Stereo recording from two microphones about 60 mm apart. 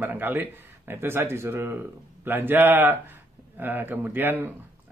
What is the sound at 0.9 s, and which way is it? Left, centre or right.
Speech, right.